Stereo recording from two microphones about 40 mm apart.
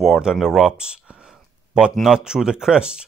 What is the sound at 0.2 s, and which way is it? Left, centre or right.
Speech, centre.